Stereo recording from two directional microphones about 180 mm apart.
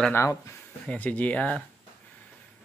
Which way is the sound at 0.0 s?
15° left (ahead or behind).